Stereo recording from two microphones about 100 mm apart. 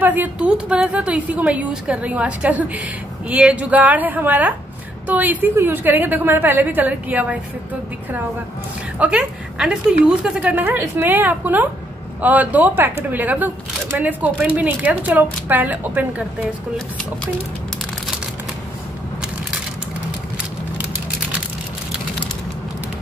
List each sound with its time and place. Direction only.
0.0 s a woman's voice: 15° right (ahead or behind)
8.9 s a woman's voice: 15° right (ahead or behind)